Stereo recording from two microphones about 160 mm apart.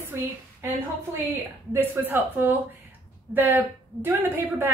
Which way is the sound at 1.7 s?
15° right (ahead or behind).